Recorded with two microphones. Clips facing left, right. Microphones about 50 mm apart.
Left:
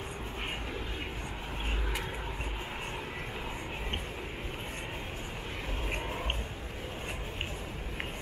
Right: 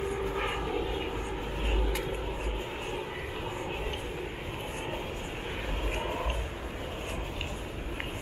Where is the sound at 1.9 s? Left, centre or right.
Centre.